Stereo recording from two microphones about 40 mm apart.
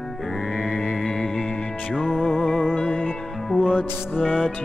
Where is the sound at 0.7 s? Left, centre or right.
Centre.